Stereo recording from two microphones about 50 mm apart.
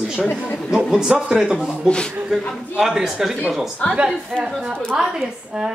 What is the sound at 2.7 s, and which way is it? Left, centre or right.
A woman's voice, centre.